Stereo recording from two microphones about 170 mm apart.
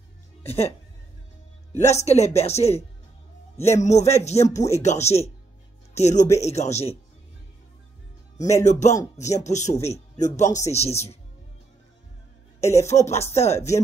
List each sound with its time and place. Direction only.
0.4 s speech: 35° left (ahead or behind)
3.8 s speech: 40° left (ahead or behind)
8.6 s speech: 45° left (ahead or behind)
12.5 s speech: 40° left (ahead or behind)
13.6 s speech: 15° left (ahead or behind)